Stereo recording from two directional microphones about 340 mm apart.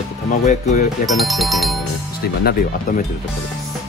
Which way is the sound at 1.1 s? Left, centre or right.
Centre.